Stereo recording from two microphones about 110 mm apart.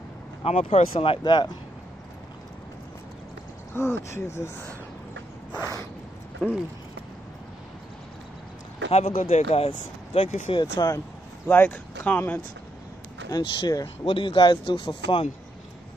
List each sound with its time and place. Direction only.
0.4 s speech: 70° left (ahead or behind); by 1.5 s 45° left (ahead or behind)
3.7 s speech: 20° left (ahead or behind)
5.5 s a sound: 35° left (ahead or behind)
8.9 s speech: 70° left (ahead or behind)
10.5 s speech: 40° left (ahead or behind)
11.4 s speech: 15° left (ahead or behind)
13.3 s speech: 45° left (ahead or behind)
14.0 s speech: 50° left (ahead or behind)